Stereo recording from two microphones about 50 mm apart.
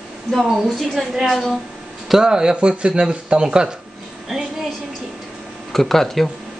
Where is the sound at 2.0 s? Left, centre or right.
Centre.